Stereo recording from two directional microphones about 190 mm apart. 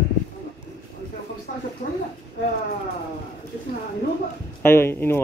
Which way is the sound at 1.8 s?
35° left (ahead or behind).